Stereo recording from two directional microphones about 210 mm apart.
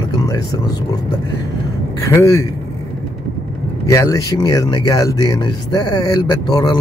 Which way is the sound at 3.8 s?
15° left (ahead or behind).